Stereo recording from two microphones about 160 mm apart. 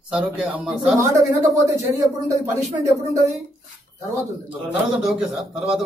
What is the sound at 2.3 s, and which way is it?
Speech, 20° right (ahead or behind).